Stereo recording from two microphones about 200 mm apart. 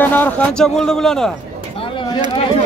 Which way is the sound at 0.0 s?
10° left (ahead or behind).